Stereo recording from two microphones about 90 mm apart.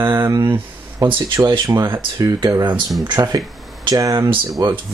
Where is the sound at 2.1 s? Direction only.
45° right (ahead or behind).